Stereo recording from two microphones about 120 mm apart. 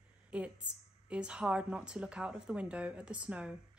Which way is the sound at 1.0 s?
10° right (ahead or behind).